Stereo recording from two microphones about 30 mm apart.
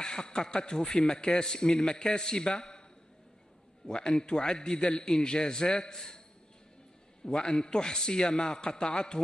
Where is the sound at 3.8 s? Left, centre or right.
Left.